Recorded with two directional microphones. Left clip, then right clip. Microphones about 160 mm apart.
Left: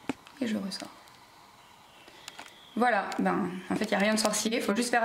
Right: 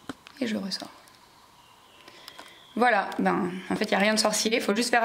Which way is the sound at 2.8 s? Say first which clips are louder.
Right 4 dB; 15° right (ahead or behind).